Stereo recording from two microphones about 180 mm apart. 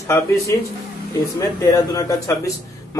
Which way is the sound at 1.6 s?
20° left (ahead or behind).